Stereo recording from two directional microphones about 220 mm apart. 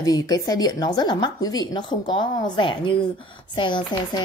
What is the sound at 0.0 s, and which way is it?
Speech, 15° left (ahead or behind).